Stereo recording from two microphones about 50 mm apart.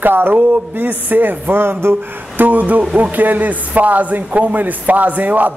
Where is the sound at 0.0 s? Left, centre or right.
Right.